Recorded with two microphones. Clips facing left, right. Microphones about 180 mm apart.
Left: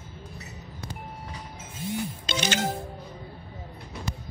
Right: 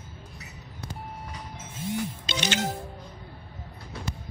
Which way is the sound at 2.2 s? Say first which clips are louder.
Left 3 dB; 45° left (ahead or behind).